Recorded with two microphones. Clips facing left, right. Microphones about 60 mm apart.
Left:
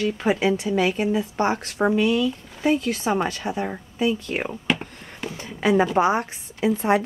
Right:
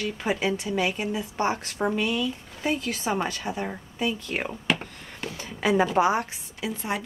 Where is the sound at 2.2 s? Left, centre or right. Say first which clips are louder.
Left 6 dB; centre.